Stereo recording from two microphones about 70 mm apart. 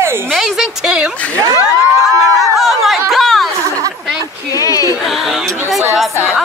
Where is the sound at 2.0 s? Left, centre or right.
Centre.